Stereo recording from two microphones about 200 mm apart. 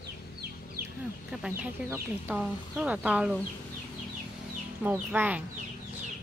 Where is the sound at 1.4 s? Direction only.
10° right (ahead or behind).